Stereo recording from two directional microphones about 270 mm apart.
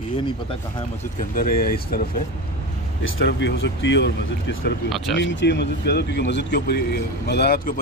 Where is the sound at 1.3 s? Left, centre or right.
Left.